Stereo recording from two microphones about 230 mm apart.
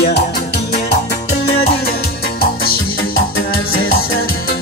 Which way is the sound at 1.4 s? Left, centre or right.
Left.